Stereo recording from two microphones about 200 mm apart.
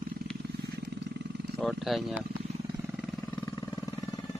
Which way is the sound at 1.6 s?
Centre (ahead or behind).